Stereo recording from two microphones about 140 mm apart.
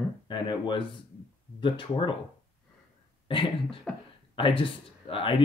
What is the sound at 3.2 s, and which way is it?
Speech, 40° left (ahead or behind).